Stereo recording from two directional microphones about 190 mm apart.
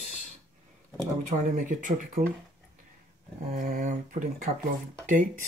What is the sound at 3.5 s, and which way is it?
Speech, 45° right (ahead or behind).